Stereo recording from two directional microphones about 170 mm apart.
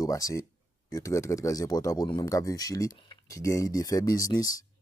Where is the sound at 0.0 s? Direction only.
20° left (ahead or behind).